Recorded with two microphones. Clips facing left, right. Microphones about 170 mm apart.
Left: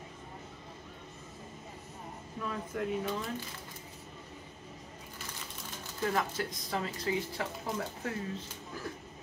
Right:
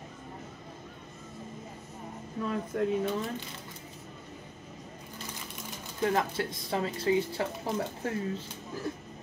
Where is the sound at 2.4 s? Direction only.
30° right (ahead or behind).